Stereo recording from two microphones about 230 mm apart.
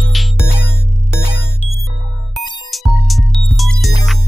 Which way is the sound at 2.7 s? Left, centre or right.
Centre.